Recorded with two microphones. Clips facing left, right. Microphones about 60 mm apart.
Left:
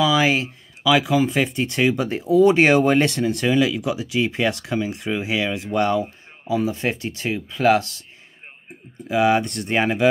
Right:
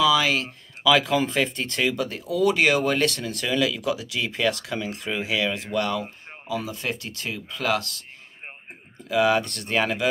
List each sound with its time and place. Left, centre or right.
0.0 s speech: left
9.1 s speech: left